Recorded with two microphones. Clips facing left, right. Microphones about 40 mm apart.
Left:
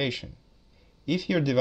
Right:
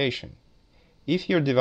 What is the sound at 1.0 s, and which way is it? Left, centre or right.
Speech, right.